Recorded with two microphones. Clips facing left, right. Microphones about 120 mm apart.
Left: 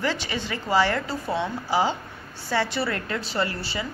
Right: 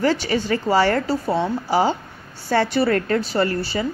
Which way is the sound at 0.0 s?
40° right (ahead or behind).